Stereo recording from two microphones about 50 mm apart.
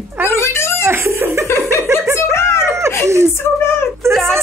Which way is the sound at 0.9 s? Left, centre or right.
Right.